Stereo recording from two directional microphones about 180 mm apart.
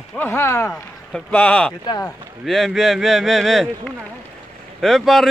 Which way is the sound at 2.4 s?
Centre (ahead or behind).